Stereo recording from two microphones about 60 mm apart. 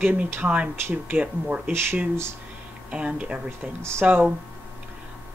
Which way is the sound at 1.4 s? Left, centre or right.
Centre.